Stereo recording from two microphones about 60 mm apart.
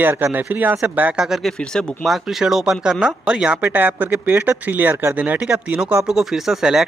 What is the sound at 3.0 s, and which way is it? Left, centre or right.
Speech, centre.